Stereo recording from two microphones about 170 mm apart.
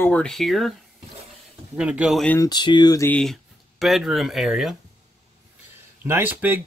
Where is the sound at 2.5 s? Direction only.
25° left (ahead or behind).